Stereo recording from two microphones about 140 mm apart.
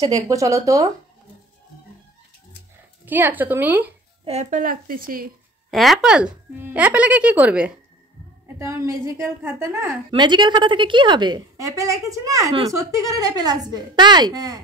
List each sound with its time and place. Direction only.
0.0 s a woman's voice: 25° right (ahead or behind)
3.1 s speech: 15° right (ahead or behind)
4.2 s a woman's voice: 50° right (ahead or behind); by 5.3 s 90° right
5.7 s a woman's voice: centre (ahead or behind); by 9.8 s 15° right (ahead or behind)
10.1 s a woman's voice: 35° right (ahead or behind)